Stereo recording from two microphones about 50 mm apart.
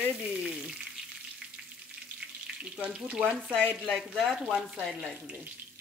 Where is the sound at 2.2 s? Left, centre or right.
Centre.